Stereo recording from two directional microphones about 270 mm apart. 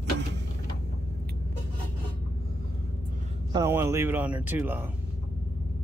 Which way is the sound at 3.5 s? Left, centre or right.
Centre.